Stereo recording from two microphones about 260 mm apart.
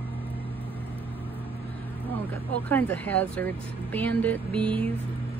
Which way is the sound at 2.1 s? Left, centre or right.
Centre.